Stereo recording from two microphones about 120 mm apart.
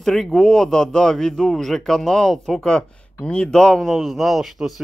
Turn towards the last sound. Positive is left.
turn(degrees=0)  # may be behind; listen again after turning